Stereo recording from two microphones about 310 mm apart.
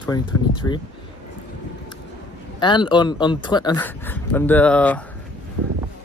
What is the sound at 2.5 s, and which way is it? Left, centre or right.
Speech, centre.